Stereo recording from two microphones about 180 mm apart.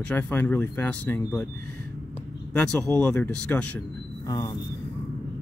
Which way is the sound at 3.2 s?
5° left (ahead or behind).